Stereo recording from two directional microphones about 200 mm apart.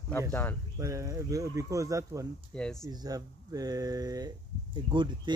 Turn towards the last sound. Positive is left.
turn(degrees=-25)  # may be behind; listen again after turning